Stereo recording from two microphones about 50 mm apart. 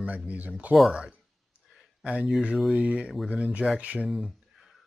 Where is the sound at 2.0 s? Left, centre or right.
Right.